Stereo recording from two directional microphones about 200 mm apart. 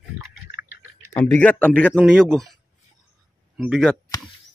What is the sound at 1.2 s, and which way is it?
Speech, 5° left (ahead or behind).